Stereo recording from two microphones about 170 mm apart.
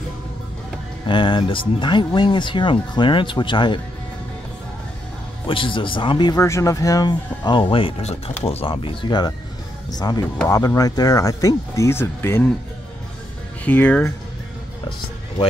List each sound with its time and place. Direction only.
1.0 s speech: 30° left (ahead or behind)
5.5 s speech: 30° left (ahead or behind); by 12.4 s 15° left (ahead or behind)
13.7 s speech: 10° left (ahead or behind)